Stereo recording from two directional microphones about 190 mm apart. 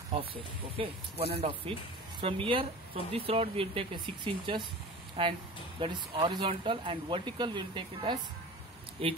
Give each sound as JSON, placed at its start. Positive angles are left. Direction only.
{"t": 0.1, "sound": "speech", "side_deg": -30}